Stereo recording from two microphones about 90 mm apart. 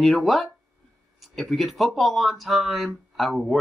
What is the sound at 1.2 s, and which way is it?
Speech, centre (ahead or behind).